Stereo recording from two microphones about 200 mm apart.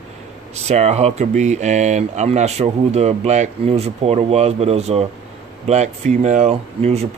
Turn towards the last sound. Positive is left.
turn(degrees=-30)  # may be behind; listen again after turning